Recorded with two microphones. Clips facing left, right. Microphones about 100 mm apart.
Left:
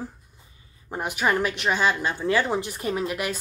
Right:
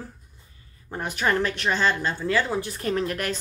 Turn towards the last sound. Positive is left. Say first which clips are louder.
# right 1 dB
turn(degrees=10)  # may be behind; listen again after turning